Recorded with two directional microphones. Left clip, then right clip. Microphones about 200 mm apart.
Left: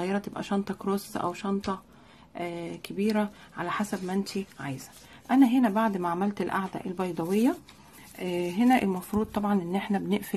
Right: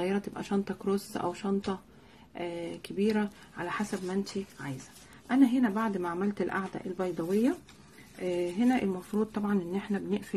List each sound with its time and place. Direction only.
0.0 s speech: 20° left (ahead or behind)